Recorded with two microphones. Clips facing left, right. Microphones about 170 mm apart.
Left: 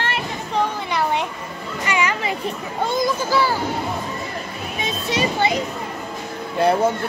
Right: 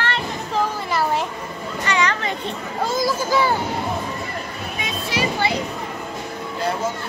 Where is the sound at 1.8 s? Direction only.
10° left (ahead or behind).